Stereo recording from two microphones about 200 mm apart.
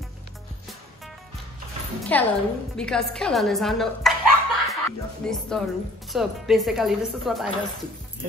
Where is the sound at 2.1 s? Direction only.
5° left (ahead or behind).